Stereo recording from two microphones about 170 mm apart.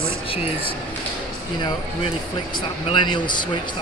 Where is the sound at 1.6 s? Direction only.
25° left (ahead or behind).